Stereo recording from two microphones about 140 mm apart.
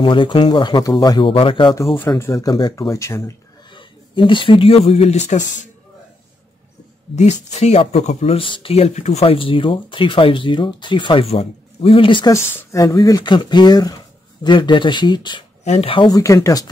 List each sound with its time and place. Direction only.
0.0 s speech: 35° left (ahead or behind)
2.1 s speech: 20° left (ahead or behind)
3.7 s speech: 35° left (ahead or behind); by 5.7 s 55° left (ahead or behind)
7.2 s speech: 55° left (ahead or behind); by 12.3 s 40° left (ahead or behind)
12.3 s speech: 20° left (ahead or behind)
15.6 s speech: 50° left (ahead or behind)
16.1 s speech: 20° left (ahead or behind)